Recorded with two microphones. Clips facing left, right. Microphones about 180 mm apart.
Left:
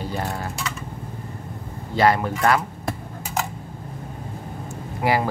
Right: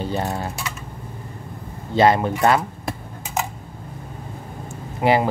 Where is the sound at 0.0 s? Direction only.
25° right (ahead or behind).